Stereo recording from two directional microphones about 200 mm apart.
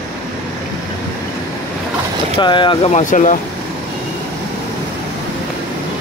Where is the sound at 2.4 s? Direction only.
25° left (ahead or behind).